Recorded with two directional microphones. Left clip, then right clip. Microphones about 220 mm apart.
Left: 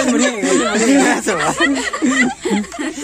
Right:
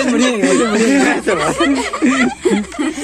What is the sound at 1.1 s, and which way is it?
Speech, 55° left (ahead or behind).